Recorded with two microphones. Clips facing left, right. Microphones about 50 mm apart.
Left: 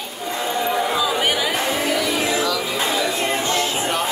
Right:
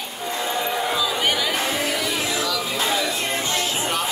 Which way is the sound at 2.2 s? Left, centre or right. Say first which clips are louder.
Left 4 dB; left.